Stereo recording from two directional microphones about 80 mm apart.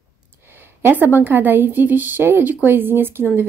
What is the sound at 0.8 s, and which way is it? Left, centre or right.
Speech, right.